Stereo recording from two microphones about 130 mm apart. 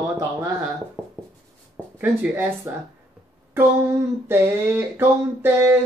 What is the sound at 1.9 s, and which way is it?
Speech, 15° right (ahead or behind).